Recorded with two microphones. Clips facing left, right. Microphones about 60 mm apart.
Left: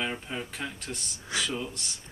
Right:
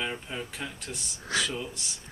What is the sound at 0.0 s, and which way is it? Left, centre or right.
Speech, centre.